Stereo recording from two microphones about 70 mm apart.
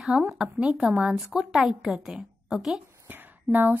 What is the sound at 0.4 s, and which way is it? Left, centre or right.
A woman's voice, centre.